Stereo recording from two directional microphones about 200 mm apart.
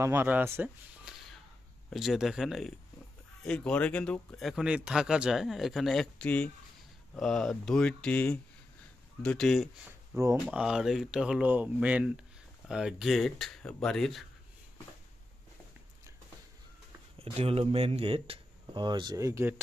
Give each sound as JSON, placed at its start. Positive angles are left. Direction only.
{"t": 0.0, "sound": "speech", "side_deg": -10}
{"t": 17.2, "sound": "speech", "side_deg": -30}